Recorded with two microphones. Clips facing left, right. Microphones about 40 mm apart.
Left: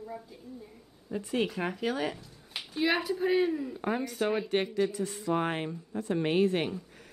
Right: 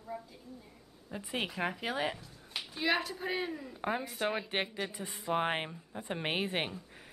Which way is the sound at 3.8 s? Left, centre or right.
Centre.